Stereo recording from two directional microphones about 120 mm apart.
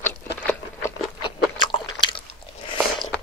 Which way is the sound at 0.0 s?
15° left (ahead or behind).